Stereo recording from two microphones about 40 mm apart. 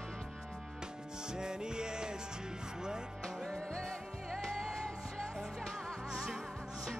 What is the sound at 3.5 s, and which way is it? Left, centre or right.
Music, centre.